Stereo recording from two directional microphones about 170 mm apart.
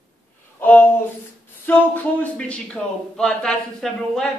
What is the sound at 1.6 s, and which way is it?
Speech, 10° left (ahead or behind).